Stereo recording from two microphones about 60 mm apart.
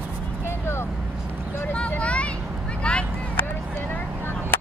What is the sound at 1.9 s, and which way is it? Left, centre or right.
Vehicle, left.